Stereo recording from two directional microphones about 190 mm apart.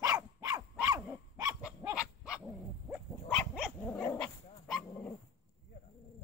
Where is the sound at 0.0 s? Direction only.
20° right (ahead or behind).